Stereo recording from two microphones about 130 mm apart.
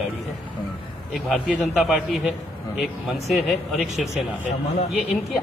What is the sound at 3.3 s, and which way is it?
Speech, centre (ahead or behind).